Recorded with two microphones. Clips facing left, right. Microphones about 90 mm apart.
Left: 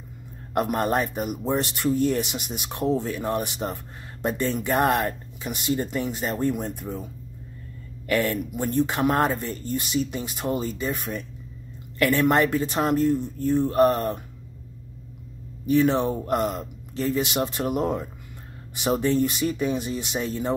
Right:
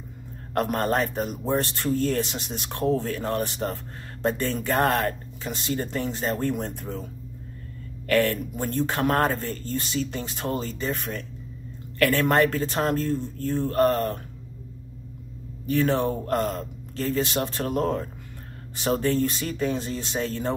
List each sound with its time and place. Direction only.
0.6 s speech: 15° left (ahead or behind)
8.1 s speech: 15° left (ahead or behind)
15.6 s speech: 20° left (ahead or behind)